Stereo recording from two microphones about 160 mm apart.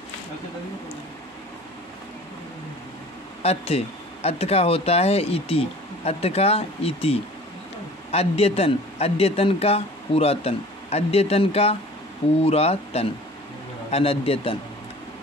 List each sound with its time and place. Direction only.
3.4 s speech: 40° left (ahead or behind)